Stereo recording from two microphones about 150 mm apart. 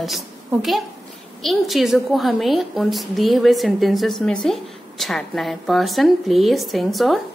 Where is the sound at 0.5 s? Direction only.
Centre (ahead or behind).